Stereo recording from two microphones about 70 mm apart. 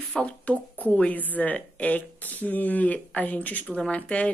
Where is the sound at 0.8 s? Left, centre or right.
Left.